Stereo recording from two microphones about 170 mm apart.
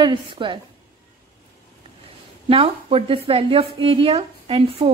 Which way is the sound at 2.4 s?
35° right (ahead or behind).